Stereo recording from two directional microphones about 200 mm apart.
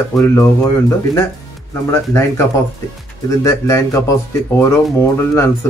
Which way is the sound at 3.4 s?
15° left (ahead or behind).